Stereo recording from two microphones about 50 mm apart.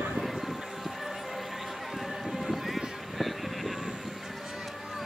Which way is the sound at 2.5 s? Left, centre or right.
Centre.